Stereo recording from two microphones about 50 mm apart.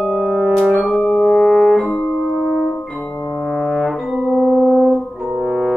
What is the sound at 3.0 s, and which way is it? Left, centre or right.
Brass instrument, left.